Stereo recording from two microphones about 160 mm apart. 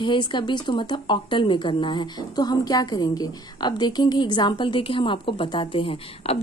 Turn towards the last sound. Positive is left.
turn(degrees=35)  # may be behind; listen again after turning